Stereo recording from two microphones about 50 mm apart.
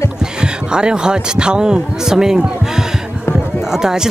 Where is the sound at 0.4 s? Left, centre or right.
Centre.